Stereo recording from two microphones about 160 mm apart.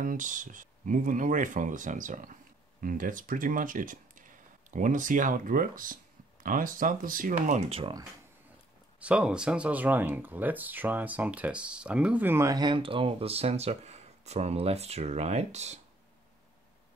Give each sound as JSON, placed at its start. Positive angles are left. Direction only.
{"t": 0.0, "sound": "speech", "side_deg": -55}
{"t": 9.0, "sound": "speech", "side_deg": -5}